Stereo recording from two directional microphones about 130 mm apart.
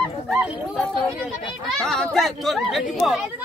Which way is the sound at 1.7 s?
Centre (ahead or behind).